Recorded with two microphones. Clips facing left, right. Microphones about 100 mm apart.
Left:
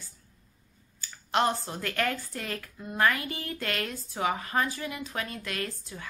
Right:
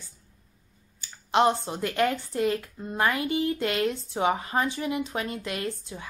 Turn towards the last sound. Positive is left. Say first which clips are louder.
# right 3 dB
turn(degrees=-20)  # may be behind; listen again after turning